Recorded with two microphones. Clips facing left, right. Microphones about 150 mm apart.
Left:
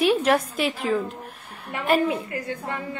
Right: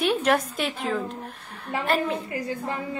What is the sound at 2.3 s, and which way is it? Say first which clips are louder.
Speech: right 1 dB; 30° right (ahead or behind).